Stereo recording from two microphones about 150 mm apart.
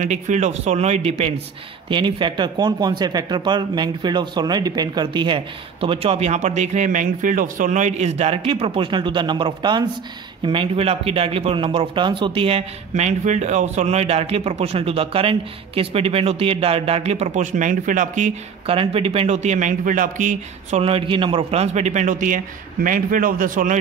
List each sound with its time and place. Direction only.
0.0 s speech: 50° right (ahead or behind)
1.9 s speech: 35° right (ahead or behind); by 18.3 s 60° right (ahead or behind)
18.7 s speech: 40° right (ahead or behind); by 20.8 s 60° right (ahead or behind)
20.8 s a man's voice: 35° right (ahead or behind); by 23.8 s 65° right (ahead or behind)